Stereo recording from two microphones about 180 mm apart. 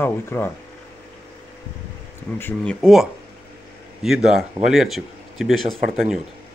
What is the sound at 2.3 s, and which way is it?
Speech, 10° left (ahead or behind).